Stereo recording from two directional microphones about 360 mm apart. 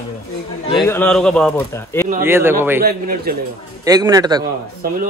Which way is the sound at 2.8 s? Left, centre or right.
Right.